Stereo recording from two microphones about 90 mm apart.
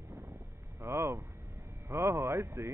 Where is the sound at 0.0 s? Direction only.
50° right (ahead or behind).